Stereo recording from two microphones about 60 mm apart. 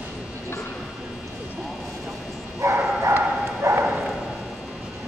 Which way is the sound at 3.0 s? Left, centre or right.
Right.